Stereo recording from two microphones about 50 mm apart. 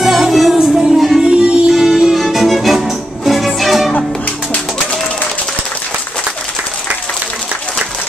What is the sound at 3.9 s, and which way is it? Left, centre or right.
Music, left.